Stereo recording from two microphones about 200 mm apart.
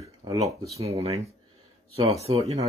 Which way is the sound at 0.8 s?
30° right (ahead or behind).